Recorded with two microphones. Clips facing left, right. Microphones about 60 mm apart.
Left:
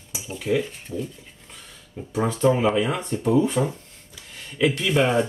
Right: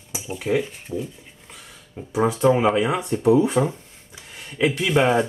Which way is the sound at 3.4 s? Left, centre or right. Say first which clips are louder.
Right 2 dB; right.